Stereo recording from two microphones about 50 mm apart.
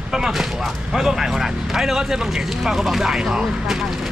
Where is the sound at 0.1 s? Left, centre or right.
Centre.